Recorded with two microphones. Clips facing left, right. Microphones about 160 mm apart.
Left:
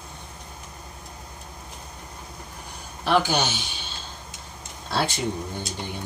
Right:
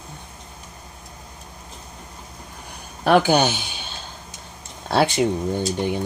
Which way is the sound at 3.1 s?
50° right (ahead or behind).